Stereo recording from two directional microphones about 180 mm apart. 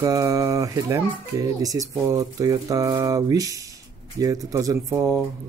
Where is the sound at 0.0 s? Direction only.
20° right (ahead or behind).